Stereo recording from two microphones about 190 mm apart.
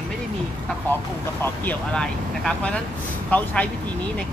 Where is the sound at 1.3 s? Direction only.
10° left (ahead or behind).